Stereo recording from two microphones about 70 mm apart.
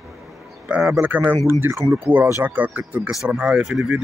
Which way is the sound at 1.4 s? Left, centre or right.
Right.